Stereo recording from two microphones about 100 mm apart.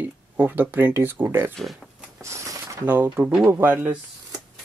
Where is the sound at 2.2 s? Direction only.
30° right (ahead or behind).